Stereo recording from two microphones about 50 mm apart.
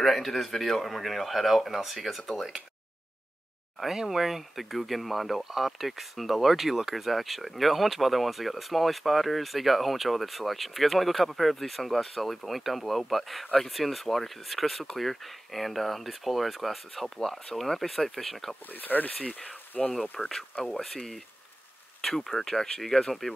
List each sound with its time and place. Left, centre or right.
0.0 s speech: centre
3.8 s speech: centre
18.7 s speech: left
19.9 s speech: centre